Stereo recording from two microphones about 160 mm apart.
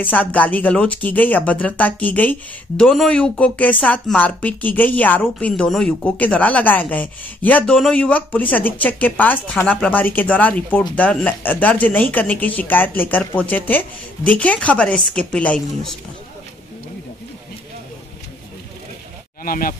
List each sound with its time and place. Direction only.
0.0 s speech: 10° left (ahead or behind)
19.4 s speech: 60° left (ahead or behind)